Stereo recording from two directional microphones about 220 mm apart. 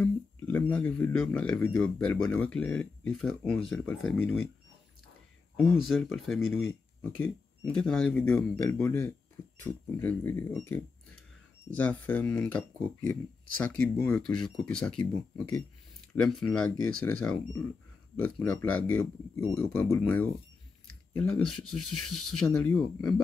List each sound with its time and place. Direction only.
0.0 s speech: 10° left (ahead or behind)
5.6 s speech: centre (ahead or behind)
16.2 s speech: centre (ahead or behind)
21.9 s speech: 90° left
22.4 s speech: 5° left (ahead or behind)